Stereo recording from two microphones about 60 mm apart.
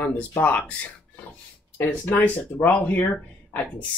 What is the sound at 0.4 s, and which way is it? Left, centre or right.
Speech, left.